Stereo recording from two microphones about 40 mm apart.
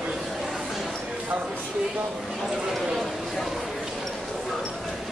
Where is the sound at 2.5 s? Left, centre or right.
Centre.